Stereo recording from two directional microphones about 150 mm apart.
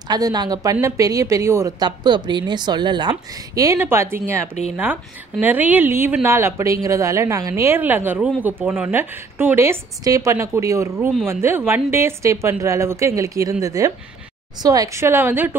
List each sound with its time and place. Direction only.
0.1 s a woman's voice: 25° right (ahead or behind)
1.9 s a woman's voice: 30° right (ahead or behind); by 15.5 s 15° right (ahead or behind)